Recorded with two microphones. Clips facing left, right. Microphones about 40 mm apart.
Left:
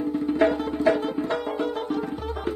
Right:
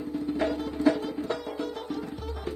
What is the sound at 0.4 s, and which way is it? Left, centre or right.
Music, left.